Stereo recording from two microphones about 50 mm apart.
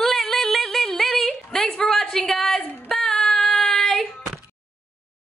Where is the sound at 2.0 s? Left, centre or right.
Centre.